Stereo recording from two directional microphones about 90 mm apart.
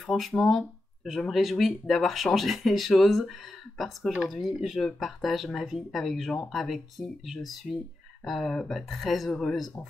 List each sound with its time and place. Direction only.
0.0 s speech: centre (ahead or behind)